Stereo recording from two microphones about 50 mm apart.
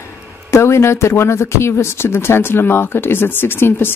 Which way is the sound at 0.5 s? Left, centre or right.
Left.